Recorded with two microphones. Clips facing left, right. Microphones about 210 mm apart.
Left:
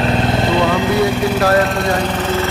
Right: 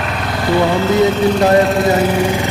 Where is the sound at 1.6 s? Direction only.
Centre (ahead or behind).